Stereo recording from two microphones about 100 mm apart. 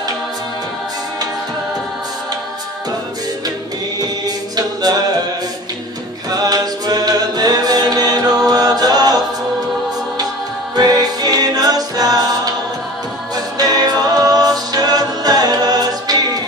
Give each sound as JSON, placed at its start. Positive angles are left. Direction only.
{"t": 4.6, "sound": "a capella", "side_deg": -40}
{"t": 6.3, "sound": "choir", "side_deg": -40}
{"t": 10.8, "sound": "music", "side_deg": -40}
{"t": 13.3, "sound": "music", "side_deg": -40}